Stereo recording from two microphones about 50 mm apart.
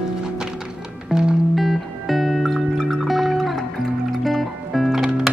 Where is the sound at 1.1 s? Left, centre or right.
Centre.